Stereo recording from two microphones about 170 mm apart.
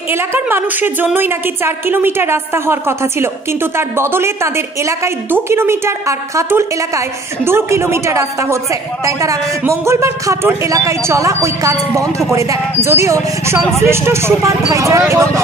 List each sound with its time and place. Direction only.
0.1 s a woman's voice: 15° right (ahead or behind)